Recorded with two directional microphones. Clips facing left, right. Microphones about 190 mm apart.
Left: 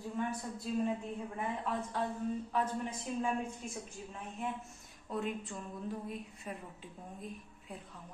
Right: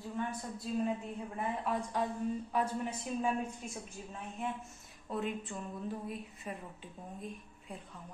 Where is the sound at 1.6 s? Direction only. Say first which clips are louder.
Right 3 dB; 15° right (ahead or behind).